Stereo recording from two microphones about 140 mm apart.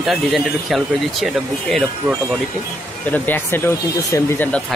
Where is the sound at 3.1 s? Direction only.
15° left (ahead or behind).